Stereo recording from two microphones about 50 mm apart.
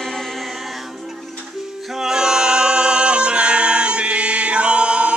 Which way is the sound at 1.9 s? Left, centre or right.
Centre.